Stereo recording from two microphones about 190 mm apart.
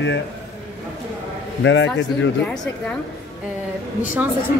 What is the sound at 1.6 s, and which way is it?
Speech, 75° left (ahead or behind).